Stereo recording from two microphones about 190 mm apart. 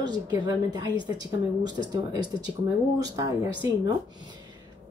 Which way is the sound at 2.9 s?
20° right (ahead or behind).